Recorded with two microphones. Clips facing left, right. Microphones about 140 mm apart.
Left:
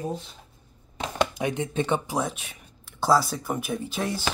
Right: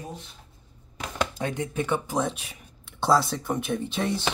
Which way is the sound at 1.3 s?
20° left (ahead or behind).